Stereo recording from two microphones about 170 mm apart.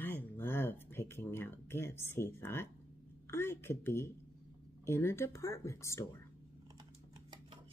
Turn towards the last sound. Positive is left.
turn(degrees=15)  # may be behind; listen again after turning